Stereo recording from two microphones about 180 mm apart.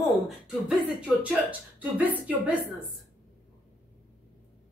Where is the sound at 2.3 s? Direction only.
10° right (ahead or behind).